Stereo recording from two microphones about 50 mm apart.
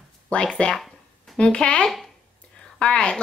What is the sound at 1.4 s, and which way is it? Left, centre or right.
Speech, left.